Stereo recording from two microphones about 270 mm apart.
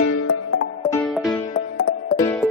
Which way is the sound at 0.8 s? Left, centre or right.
Centre.